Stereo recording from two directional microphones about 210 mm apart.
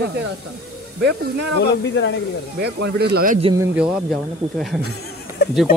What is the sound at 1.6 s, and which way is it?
Speech, 55° left (ahead or behind).